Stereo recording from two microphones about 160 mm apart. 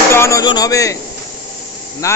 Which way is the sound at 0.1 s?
15° left (ahead or behind).